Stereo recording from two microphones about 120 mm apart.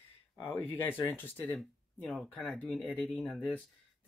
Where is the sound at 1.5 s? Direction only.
Centre (ahead or behind).